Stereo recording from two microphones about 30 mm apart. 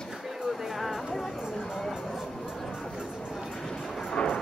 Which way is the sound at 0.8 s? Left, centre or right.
Centre.